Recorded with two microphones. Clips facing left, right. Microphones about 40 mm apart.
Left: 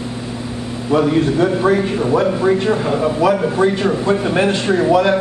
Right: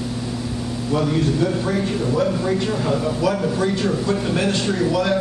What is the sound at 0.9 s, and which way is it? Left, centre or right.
A man's voice, left.